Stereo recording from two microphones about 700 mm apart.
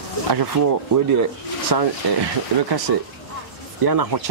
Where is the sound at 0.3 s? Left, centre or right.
Right.